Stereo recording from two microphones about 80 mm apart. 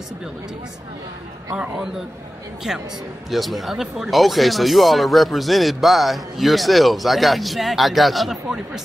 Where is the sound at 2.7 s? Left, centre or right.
Centre.